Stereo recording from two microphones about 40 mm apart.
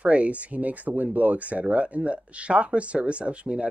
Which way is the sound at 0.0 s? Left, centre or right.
Right.